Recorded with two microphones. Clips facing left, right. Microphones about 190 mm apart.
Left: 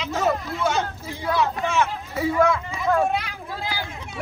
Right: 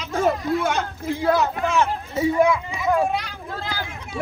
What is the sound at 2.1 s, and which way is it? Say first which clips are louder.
Speech: right 2 dB; 15° right (ahead or behind).